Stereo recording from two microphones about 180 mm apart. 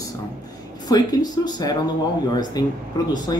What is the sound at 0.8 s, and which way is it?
Speech, 20° left (ahead or behind).